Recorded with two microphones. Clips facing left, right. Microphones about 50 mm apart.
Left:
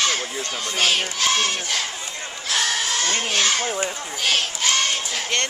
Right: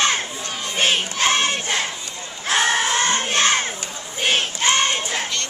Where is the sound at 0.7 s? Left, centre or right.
Right.